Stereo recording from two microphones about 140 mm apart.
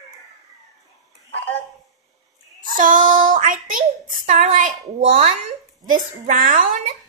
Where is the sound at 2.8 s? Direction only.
70° right (ahead or behind).